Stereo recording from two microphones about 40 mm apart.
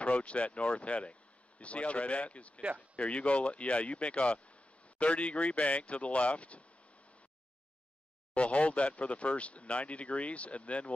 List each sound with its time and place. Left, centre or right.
0.0 s speech: left
8.4 s speech: left